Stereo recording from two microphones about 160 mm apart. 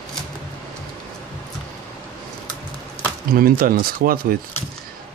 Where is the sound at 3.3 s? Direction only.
65° right (ahead or behind).